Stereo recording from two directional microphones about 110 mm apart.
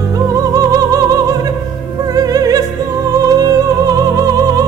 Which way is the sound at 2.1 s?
35° right (ahead or behind).